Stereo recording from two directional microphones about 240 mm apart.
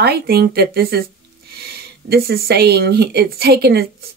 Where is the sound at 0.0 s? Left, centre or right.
Right.